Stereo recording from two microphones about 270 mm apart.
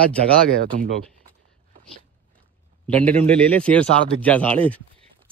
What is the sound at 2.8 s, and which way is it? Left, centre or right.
A man's voice, centre.